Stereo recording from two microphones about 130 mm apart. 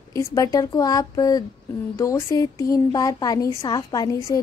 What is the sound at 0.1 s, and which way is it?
A woman's voice, 25° left (ahead or behind).